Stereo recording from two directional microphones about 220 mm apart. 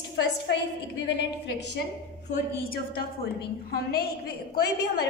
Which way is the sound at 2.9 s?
45° left (ahead or behind).